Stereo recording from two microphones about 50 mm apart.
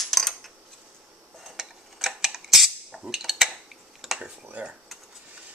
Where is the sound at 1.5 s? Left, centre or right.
Centre.